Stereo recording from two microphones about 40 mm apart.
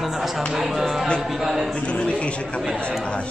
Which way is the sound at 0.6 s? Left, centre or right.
Centre.